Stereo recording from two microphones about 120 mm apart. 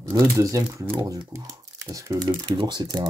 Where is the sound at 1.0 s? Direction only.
30° right (ahead or behind).